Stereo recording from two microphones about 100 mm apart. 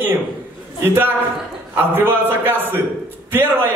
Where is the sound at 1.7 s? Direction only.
20° right (ahead or behind).